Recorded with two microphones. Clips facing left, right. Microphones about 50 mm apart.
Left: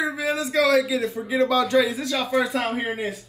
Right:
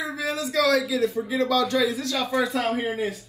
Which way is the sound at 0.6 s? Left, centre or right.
Left.